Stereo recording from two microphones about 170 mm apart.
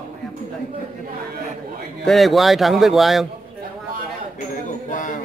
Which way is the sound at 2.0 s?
Centre (ahead or behind).